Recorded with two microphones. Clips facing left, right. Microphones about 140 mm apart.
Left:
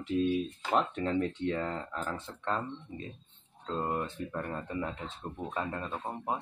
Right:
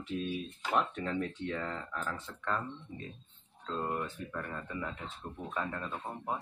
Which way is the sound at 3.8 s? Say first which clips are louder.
Left 3 dB; 25° left (ahead or behind).